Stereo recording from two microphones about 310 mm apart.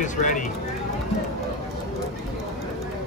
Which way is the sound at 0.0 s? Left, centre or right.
Left.